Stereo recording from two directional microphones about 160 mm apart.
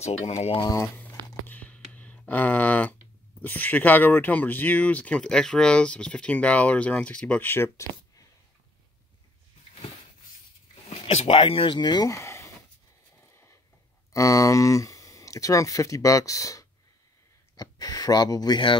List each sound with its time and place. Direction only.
0.0 s speech: 45° left (ahead or behind)
0.6 s speech: 20° left (ahead or behind)
1.5 s a sound: 10° left (ahead or behind)
3.4 s speech: 10° left (ahead or behind)
10.9 s speech: 40° left (ahead or behind); by 12.4 s 15° left (ahead or behind)
14.1 s speech: 20° left (ahead or behind)